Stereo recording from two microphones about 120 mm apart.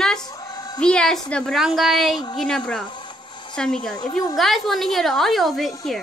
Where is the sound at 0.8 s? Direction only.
5° left (ahead or behind).